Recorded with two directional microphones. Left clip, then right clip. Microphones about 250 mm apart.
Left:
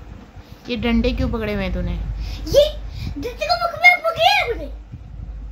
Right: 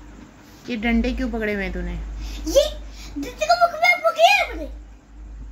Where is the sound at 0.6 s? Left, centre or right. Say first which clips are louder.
Left 2 dB; centre.